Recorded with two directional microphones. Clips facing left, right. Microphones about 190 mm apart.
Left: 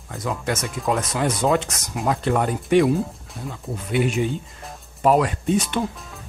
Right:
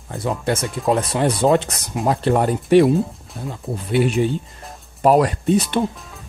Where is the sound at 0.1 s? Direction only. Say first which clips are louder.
Right 4 dB; 30° right (ahead or behind).